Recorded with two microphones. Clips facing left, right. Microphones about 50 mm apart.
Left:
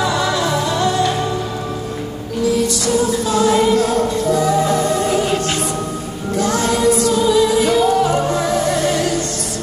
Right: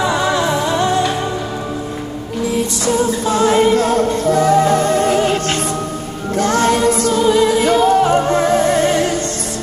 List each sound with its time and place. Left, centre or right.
0.0 s music: right
2.5 s music: right